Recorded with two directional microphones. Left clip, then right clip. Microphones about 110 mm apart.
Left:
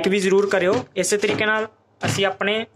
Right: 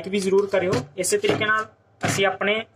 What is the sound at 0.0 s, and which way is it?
Speech, 90° left.